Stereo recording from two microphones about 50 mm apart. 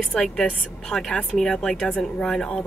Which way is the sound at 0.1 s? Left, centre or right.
Centre.